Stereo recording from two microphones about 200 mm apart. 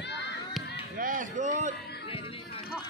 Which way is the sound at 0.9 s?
45° right (ahead or behind).